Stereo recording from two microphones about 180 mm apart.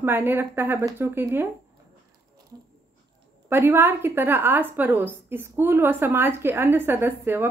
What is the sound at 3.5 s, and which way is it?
A woman's voice, 10° right (ahead or behind).